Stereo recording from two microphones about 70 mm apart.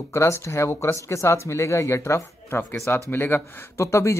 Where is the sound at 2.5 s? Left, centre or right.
Left.